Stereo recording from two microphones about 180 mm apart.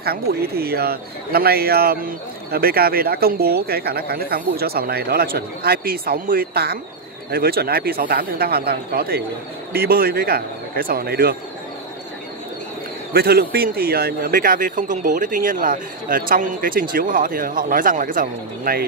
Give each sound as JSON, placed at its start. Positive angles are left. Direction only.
{"t": 0.0, "sound": "speech", "side_deg": -60}
{"t": 13.1, "sound": "a man's voice", "side_deg": -60}